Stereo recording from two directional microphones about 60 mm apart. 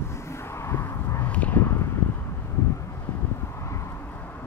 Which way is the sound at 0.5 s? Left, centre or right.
Left.